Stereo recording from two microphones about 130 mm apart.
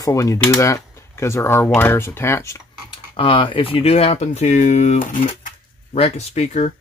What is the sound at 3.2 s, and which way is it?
Speech, 40° left (ahead or behind).